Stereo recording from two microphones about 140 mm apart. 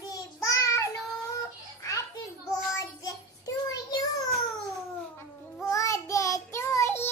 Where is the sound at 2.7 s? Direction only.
25° left (ahead or behind).